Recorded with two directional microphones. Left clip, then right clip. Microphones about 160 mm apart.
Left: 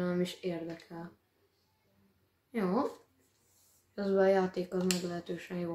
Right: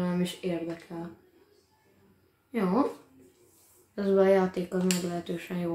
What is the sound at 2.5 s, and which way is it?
Speech, 25° left (ahead or behind).